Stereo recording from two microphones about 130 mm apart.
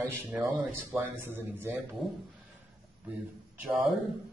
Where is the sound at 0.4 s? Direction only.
20° right (ahead or behind).